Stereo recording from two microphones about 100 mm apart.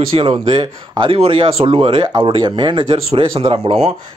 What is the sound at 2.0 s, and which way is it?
Speech, 55° right (ahead or behind).